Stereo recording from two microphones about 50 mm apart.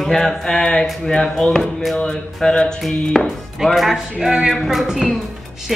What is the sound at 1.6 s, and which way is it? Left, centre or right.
Music, centre.